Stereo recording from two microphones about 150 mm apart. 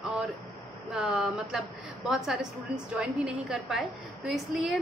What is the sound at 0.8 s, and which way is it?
A woman's voice, 5° right (ahead or behind).